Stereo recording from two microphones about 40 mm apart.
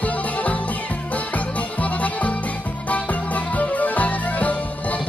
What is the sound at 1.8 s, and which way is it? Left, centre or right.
Music, left.